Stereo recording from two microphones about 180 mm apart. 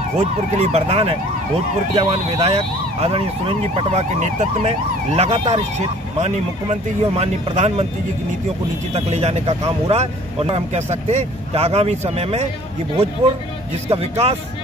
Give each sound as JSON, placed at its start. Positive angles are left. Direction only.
{"t": 0.2, "sound": "speech", "side_deg": -35}
{"t": 8.9, "sound": "speech", "side_deg": -35}
{"t": 13.8, "sound": "speech", "side_deg": -35}